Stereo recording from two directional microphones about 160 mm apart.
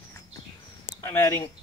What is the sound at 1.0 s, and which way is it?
Speech, 15° left (ahead or behind).